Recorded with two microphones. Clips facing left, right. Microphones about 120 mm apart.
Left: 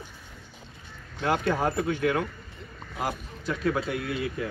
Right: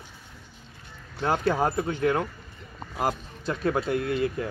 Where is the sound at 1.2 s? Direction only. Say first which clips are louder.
Right 1 dB; 35° right (ahead or behind).